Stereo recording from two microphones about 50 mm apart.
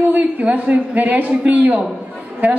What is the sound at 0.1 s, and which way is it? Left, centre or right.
A woman's voice, right.